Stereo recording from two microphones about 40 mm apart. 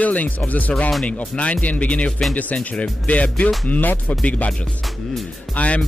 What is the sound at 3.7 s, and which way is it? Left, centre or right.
Speech, left.